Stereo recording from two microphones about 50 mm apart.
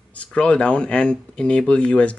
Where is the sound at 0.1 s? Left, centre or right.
Left.